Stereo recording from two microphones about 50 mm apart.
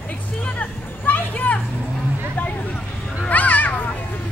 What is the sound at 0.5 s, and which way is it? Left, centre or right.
Children playing, left.